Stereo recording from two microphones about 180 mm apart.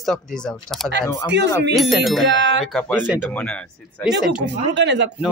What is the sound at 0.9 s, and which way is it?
Speech, 75° right (ahead or behind).